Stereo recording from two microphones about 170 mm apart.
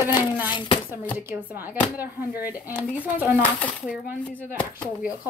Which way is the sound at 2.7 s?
10° left (ahead or behind).